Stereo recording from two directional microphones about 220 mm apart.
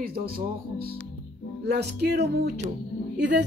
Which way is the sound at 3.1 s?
50° right (ahead or behind).